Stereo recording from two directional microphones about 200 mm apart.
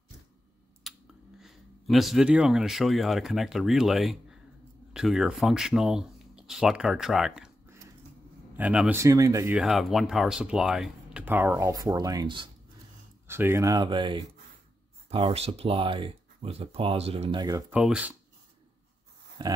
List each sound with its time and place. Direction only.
0.8 s a sound: centre (ahead or behind)
1.4 s speech: centre (ahead or behind)
9.6 s speech: centre (ahead or behind)
19.4 s speech: 20° right (ahead or behind)